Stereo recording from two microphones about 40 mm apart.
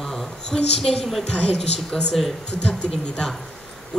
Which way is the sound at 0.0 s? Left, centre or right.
Centre.